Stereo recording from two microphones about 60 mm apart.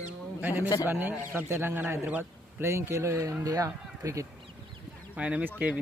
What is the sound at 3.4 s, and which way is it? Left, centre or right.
Speech, right.